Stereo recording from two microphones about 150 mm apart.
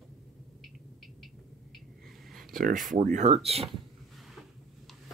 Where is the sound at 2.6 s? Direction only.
60° right (ahead or behind).